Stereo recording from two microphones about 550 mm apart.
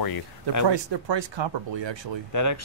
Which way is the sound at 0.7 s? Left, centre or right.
Right.